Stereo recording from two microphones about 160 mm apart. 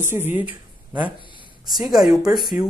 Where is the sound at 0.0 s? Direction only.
15° right (ahead or behind).